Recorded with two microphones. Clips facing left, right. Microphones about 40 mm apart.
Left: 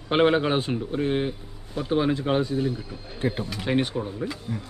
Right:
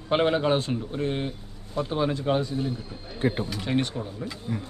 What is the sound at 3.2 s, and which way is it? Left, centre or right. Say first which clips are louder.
Speech: right 1 dB; right.